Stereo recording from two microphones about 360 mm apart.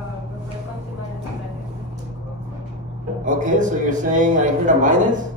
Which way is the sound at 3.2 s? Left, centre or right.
Right.